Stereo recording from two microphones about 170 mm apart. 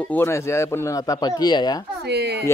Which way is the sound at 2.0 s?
80° right.